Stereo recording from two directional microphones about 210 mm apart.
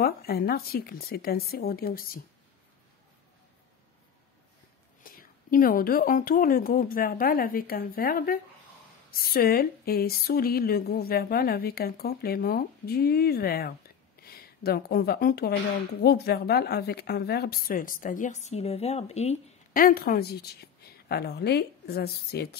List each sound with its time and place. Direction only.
0.0 s speech: 45° left (ahead or behind)
5.0 s speech: 45° left (ahead or behind)